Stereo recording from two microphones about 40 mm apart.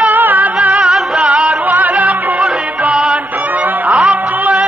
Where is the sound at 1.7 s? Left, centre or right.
Right.